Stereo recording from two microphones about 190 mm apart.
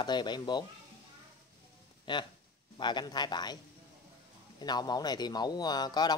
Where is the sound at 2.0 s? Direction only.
25° left (ahead or behind).